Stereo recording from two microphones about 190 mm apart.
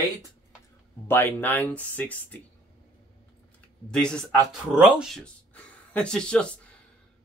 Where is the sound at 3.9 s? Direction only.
5° left (ahead or behind).